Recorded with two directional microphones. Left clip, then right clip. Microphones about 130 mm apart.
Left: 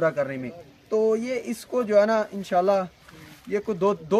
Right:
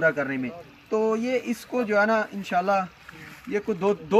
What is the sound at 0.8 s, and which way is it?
Speech, 30° left (ahead or behind).